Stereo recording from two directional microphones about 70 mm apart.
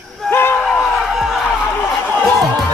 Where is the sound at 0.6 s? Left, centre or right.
Centre.